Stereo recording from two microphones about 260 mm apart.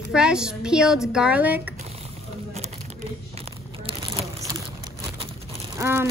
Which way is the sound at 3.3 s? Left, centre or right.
Right.